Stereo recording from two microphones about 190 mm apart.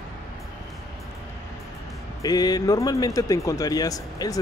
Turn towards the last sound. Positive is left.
turn(degrees=20)  # may be behind; listen again after turning